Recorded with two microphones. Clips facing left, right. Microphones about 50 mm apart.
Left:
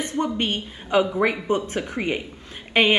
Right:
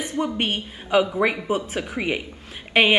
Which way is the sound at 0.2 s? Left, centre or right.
Centre.